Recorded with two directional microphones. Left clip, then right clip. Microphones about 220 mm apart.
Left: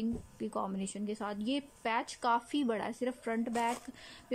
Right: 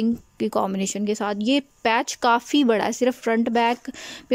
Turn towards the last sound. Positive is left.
turn(degrees=-50)  # may be behind; listen again after turning